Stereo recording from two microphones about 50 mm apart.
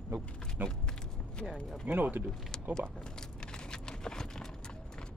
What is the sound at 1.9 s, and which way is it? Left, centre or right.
Speech, right.